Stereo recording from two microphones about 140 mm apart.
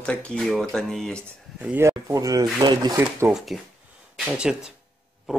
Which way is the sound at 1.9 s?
20° right (ahead or behind).